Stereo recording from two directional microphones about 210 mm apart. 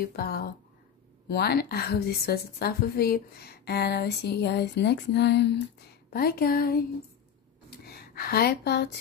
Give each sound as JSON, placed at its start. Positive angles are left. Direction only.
{"t": 0.0, "sound": "a woman's voice", "side_deg": 45}
{"t": 7.8, "sound": "speech", "side_deg": 50}